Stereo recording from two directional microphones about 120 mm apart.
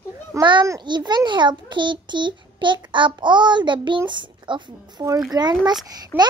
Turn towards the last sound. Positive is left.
turn(degrees=-15)  # may be behind; listen again after turning